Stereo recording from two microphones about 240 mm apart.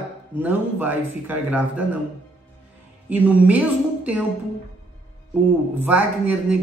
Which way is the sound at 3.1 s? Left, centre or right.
Centre.